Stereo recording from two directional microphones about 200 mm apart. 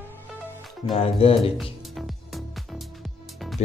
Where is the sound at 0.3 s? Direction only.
5° right (ahead or behind).